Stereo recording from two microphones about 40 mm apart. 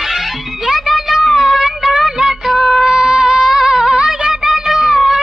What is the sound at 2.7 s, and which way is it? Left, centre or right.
Music, centre.